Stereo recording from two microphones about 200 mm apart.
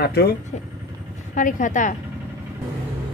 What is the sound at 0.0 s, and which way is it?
Speech, 55° left (ahead or behind).